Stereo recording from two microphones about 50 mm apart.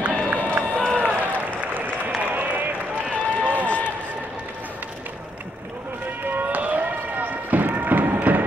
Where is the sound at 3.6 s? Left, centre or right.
Left.